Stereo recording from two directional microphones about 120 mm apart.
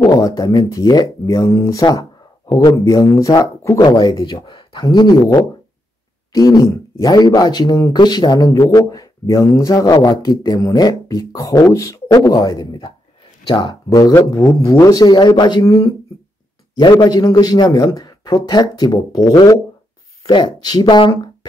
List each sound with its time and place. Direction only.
0.1 s a man's voice: 30° left (ahead or behind)
4.0 s speech: 40° left (ahead or behind)
13.8 s speech: 30° left (ahead or behind)
21.1 s a sound: 35° left (ahead or behind)